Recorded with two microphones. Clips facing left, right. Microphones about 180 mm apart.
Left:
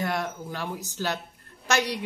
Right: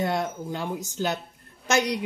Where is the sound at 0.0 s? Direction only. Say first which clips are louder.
Right 3 dB; 25° right (ahead or behind).